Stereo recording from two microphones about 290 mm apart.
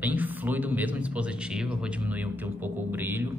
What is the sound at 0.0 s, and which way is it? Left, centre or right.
A man's voice, centre.